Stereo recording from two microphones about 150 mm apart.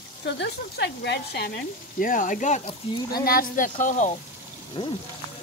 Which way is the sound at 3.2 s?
70° left (ahead or behind).